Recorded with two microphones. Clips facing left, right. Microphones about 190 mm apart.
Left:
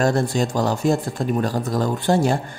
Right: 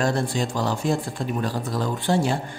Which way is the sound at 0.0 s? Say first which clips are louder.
Left 4 dB; 45° left (ahead or behind).